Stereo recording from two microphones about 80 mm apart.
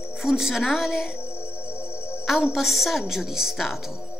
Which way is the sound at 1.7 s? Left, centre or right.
Left.